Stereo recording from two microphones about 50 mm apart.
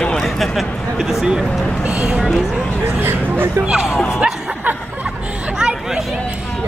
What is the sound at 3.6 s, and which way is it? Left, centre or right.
Speech, centre.